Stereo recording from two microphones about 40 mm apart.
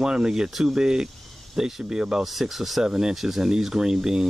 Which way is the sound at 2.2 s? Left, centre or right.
Centre.